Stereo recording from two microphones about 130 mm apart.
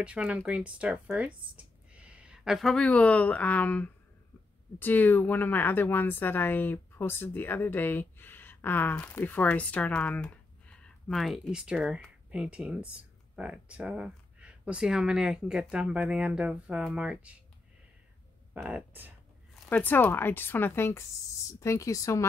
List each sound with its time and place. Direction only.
0.0 s a woman's voice: 10° right (ahead or behind)
18.5 s speech: 15° right (ahead or behind)
19.7 s a woman's voice: 15° left (ahead or behind)